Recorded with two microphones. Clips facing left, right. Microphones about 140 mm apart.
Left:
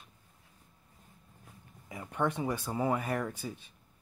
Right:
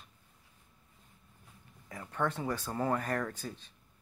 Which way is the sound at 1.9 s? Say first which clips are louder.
Left 2 dB; 15° left (ahead or behind).